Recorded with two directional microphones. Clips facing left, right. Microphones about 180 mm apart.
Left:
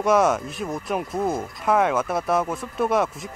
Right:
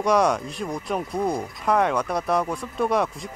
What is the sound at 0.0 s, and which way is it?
Speech, centre (ahead or behind).